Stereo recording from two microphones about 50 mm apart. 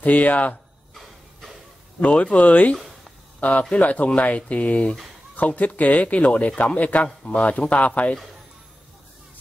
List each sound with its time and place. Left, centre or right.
0.0 s speech: left
2.0 s speech: left